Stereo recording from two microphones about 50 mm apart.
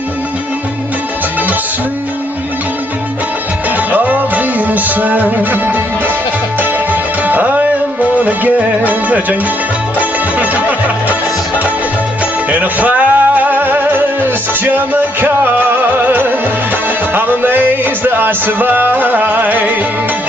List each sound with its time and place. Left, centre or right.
3.7 s music: right
9.9 s music: right
12.4 s music: right